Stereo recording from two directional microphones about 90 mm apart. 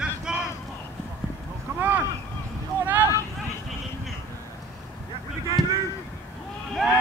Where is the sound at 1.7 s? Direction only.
30° right (ahead or behind).